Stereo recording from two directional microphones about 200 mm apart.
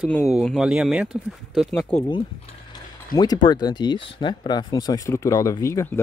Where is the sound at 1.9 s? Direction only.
25° left (ahead or behind).